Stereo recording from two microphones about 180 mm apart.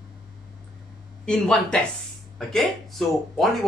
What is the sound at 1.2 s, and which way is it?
Speech, 5° left (ahead or behind).